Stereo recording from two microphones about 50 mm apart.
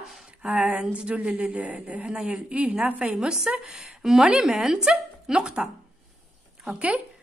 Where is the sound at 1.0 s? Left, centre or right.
Right.